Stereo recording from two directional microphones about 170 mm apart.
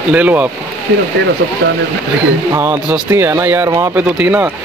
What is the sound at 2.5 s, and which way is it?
A man's voice, 15° right (ahead or behind).